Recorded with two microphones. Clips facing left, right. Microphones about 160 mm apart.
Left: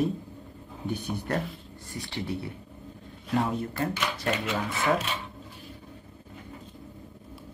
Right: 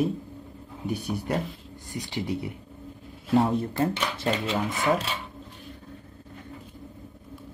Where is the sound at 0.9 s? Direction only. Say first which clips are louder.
Right 2 dB; 10° right (ahead or behind).